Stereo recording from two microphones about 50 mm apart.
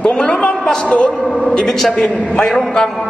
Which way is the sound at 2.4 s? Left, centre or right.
Centre.